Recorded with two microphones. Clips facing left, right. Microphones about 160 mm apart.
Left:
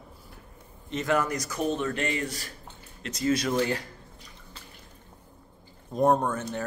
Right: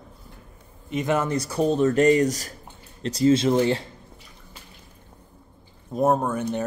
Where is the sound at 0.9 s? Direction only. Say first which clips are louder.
Right 3 dB; 20° right (ahead or behind).